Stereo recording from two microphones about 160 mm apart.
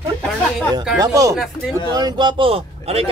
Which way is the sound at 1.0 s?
20° right (ahead or behind).